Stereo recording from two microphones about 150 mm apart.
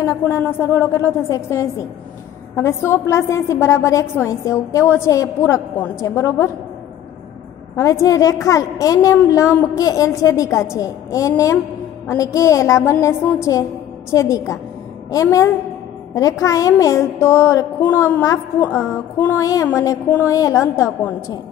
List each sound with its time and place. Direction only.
0.0 s a woman's voice: 20° left (ahead or behind)
7.7 s a woman's voice: 20° left (ahead or behind)
16.4 s a woman's voice: 20° left (ahead or behind)
18.8 s music: 15° left (ahead or behind)
20.1 s a woman's voice: 20° left (ahead or behind)